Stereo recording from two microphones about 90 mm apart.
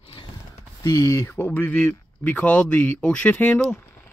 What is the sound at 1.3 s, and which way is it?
Speech, 20° left (ahead or behind).